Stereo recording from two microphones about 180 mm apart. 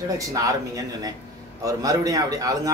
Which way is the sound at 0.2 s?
20° right (ahead or behind).